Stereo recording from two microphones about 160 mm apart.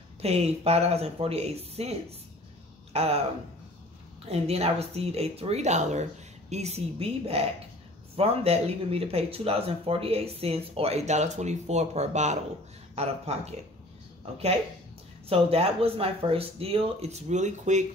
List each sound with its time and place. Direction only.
0.2 s speech: 40° right (ahead or behind)
4.3 s speech: 40° right (ahead or behind)
15.2 s speech: 35° right (ahead or behind)